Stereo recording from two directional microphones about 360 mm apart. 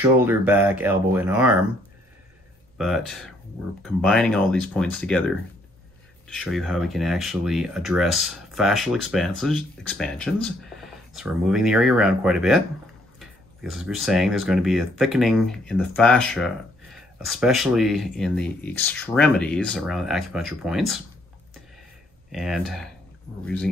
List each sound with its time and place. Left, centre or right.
0.0 s speech: centre
2.8 s speech: centre
6.2 s speech: centre
22.3 s speech: centre